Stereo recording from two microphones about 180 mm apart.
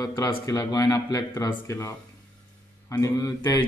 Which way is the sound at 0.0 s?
20° left (ahead or behind).